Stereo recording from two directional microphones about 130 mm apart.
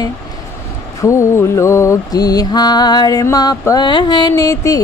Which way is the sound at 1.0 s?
20° left (ahead or behind).